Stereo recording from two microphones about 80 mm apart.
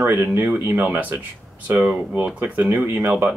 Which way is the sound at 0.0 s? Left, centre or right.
Right.